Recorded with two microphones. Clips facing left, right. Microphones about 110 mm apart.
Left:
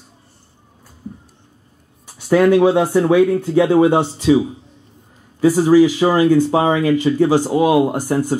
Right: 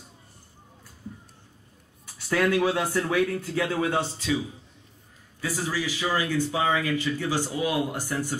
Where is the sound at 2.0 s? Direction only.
20° left (ahead or behind).